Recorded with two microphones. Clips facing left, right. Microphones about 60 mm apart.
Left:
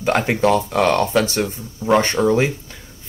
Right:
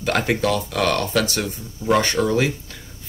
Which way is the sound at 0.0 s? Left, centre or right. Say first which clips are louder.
Left 3 dB; left.